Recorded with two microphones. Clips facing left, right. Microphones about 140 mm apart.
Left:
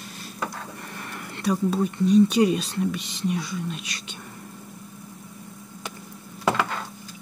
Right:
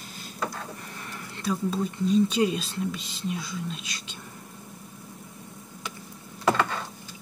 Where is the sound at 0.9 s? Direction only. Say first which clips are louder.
Left 3 dB; 65° left (ahead or behind).